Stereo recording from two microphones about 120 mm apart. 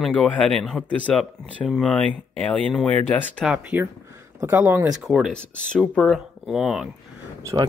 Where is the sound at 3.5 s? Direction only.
15° right (ahead or behind).